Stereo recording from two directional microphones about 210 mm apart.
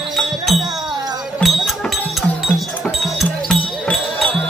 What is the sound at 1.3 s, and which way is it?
Music, centre (ahead or behind).